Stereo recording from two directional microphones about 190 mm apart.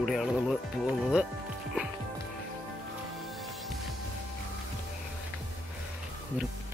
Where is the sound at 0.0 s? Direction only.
Centre (ahead or behind).